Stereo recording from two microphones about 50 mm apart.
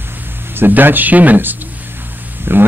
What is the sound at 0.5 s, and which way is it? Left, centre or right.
Speech, right.